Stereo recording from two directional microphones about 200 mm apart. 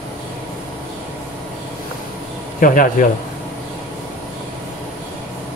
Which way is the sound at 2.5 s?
45° left (ahead or behind).